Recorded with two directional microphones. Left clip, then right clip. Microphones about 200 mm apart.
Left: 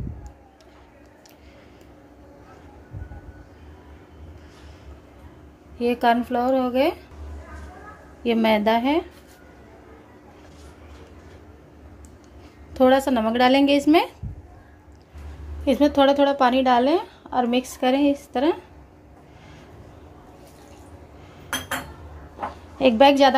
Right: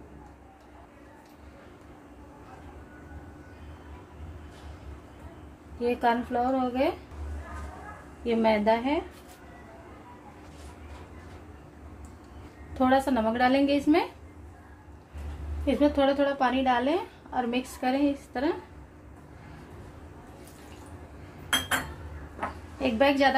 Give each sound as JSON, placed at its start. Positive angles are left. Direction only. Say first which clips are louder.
{"t": 5.8, "sound": "a woman's voice", "louder": "left 6 dB", "side_deg": 40}
{"t": 8.2, "sound": "a woman's voice", "louder": "left 5 dB", "side_deg": 45}
{"t": 12.7, "sound": "a woman's voice", "louder": "left 6 dB", "side_deg": 35}
{"t": 15.6, "sound": "a woman's voice", "louder": "left 6 dB", "side_deg": 45}
{"t": 22.8, "sound": "a woman's voice", "louder": "left 9 dB", "side_deg": 40}